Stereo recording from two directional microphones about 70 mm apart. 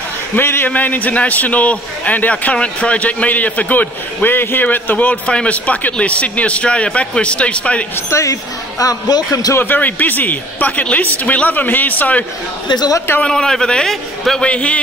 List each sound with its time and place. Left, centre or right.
0.4 s a man's voice: left
8.1 s speech: left
9.6 s a man's voice: left
12.6 s a man's voice: left
13.2 s a man's voice: centre